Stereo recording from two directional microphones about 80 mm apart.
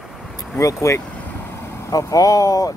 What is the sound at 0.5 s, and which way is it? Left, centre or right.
Speech, left.